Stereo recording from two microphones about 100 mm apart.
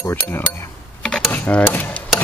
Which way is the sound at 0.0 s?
20° left (ahead or behind).